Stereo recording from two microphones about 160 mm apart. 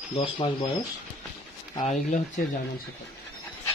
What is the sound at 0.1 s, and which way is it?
Speech, 35° left (ahead or behind).